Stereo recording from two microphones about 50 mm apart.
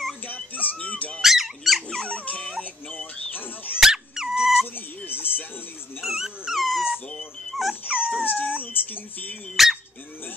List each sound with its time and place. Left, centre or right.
0.3 s music: left
1.2 s dog: centre
2.1 s dog: left
3.8 s dog: centre
5.0 s music: left
5.9 s dog: centre
8.0 s dog: left
9.6 s dog: centre